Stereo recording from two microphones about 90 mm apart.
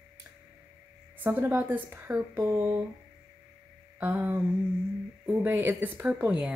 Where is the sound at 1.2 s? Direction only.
20° right (ahead or behind).